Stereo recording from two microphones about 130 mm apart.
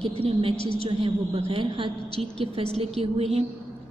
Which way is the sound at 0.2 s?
45° right (ahead or behind).